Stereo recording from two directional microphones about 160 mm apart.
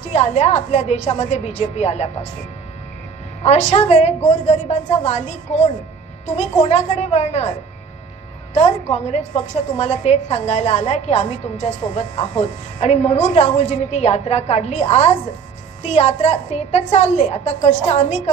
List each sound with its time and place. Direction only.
0.0 s a woman's voice: 45° left (ahead or behind)
3.4 s a woman's voice: 45° left (ahead or behind)
8.5 s a woman's voice: 40° left (ahead or behind)